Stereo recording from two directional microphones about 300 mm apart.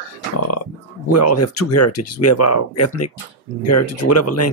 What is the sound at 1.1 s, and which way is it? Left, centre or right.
Speech, left.